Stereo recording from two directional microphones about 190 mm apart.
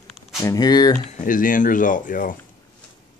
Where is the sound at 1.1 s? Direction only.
45° left (ahead or behind).